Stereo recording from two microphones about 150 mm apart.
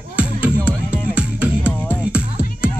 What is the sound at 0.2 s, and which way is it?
Music, 10° right (ahead or behind).